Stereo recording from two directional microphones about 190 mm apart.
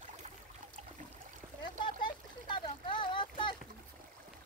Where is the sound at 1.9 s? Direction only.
25° left (ahead or behind).